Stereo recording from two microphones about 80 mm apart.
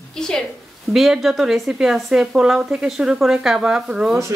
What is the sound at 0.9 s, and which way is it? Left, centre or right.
Speech, centre.